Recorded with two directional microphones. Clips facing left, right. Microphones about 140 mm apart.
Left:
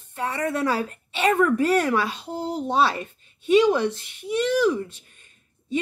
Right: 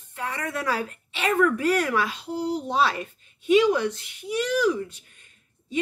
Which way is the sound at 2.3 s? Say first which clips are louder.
Right 2 dB; 50° left (ahead or behind).